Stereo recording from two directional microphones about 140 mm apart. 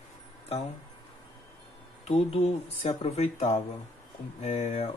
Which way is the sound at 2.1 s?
45° left (ahead or behind).